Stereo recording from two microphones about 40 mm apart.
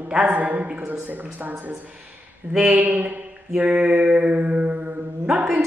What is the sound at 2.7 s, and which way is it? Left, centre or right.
Speech, right.